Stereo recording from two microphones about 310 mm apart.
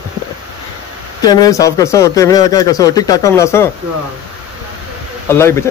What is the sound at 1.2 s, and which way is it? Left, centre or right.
Speech, centre.